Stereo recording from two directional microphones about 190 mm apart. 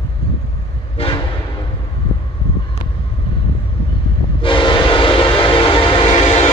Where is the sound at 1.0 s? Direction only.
30° left (ahead or behind).